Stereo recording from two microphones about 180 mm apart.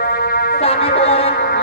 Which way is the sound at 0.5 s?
35° left (ahead or behind).